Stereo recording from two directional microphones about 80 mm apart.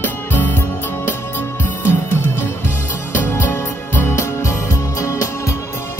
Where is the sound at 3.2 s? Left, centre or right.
Left.